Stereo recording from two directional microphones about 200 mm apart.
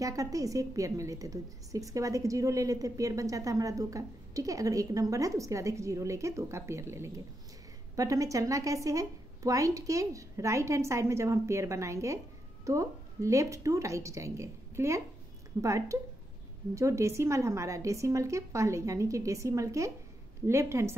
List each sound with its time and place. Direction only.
0.0 s a woman's voice: 15° right (ahead or behind)